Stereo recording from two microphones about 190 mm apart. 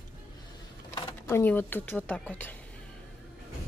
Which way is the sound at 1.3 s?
10° left (ahead or behind).